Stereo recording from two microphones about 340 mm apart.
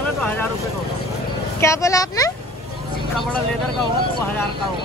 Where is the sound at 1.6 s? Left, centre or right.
Centre.